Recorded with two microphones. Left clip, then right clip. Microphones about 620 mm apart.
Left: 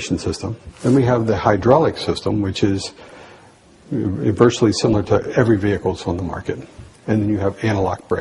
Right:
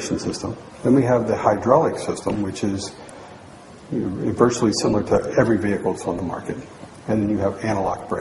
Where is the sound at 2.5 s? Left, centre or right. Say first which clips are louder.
Left 6 dB; left.